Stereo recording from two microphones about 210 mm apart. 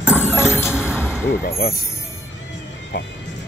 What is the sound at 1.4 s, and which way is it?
Speech, 45° left (ahead or behind).